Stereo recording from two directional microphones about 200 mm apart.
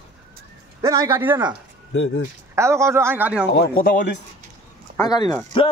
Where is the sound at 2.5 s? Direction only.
15° right (ahead or behind).